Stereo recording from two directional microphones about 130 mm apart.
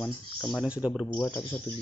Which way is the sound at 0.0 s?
10° left (ahead or behind).